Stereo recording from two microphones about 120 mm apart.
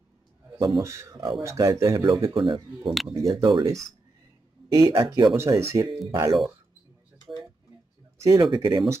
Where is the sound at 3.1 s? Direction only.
30° right (ahead or behind).